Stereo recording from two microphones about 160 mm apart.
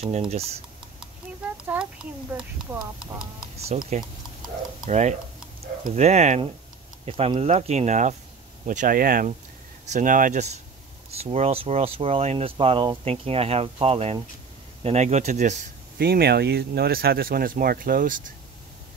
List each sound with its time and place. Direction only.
0.3 s speech: 40° right (ahead or behind)
1.7 s speech: 10° right (ahead or behind)
3.5 s speech: 40° right (ahead or behind)
4.8 s speech: 45° right (ahead or behind)
8.6 s speech: 60° right (ahead or behind)
16.0 s speech: 80° right; by 18.3 s 55° right (ahead or behind)